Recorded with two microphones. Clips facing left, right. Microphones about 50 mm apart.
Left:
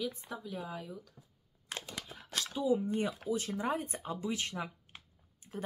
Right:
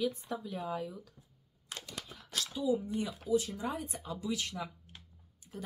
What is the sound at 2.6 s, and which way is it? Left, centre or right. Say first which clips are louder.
Speech: left 2 dB; left.